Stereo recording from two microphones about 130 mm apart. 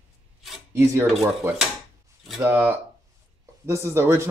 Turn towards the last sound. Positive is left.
turn(degrees=-20)  # may be behind; listen again after turning